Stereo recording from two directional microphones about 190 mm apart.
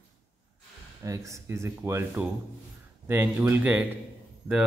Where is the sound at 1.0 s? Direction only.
15° right (ahead or behind).